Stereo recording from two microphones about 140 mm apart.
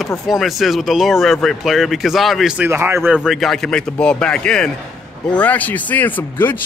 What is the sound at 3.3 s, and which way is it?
A man's voice, centre (ahead or behind).